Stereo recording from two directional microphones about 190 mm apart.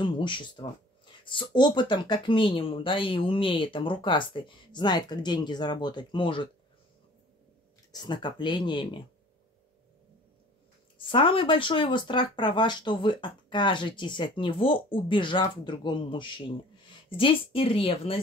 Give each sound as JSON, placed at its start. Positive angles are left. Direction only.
{"t": 0.0, "sound": "speech", "side_deg": 25}
{"t": 7.9, "sound": "speech", "side_deg": 20}
{"t": 11.0, "sound": "speech", "side_deg": 25}